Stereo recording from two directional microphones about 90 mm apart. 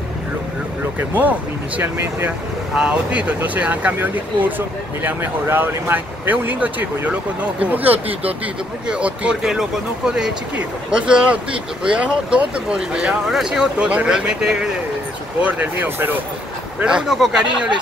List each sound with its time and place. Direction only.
0.9 s speech: 20° right (ahead or behind)
2.7 s speech: 10° right (ahead or behind)
8.1 s speech: 90° right
8.8 s speech: 10° right (ahead or behind)
15.4 s speech: 20° right (ahead or behind)
16.8 s speech: 5° right (ahead or behind)